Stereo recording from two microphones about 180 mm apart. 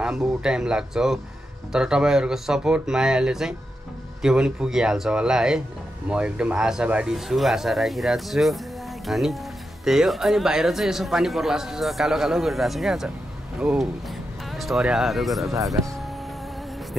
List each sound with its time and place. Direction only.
0.0 s speech: 5° right (ahead or behind)